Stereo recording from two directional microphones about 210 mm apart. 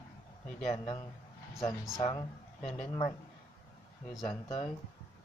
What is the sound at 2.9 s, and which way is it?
Speech, 25° left (ahead or behind).